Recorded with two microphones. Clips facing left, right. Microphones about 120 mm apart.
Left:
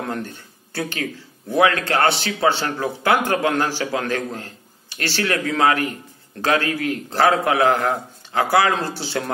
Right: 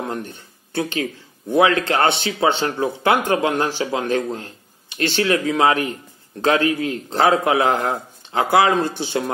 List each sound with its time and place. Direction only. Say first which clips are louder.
0.0 s a man's voice: even; 15° right (ahead or behind)